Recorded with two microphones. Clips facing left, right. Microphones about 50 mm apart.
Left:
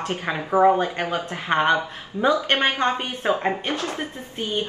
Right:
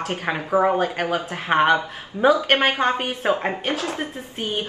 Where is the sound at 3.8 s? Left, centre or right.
Right.